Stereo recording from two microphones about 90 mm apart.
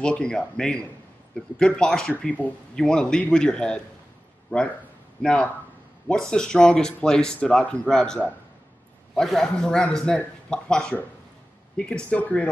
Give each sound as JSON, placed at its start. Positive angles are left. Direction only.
{"t": 0.0, "sound": "speech", "side_deg": 10}